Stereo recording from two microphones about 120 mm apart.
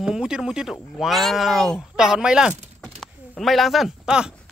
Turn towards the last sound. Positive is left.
turn(degrees=-5)  # may be behind; listen again after turning